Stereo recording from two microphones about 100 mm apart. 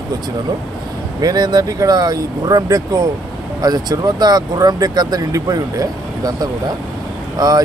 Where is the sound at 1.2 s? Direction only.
45° right (ahead or behind).